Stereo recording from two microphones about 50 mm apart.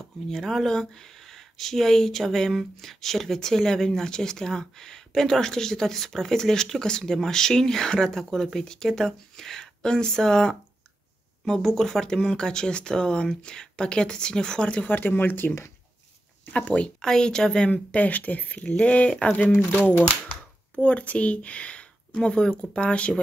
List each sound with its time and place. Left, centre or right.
0.0 s speech: centre
14.9 s speech: left
16.5 s speech: left
17.0 s speech: centre
17.6 s speech: left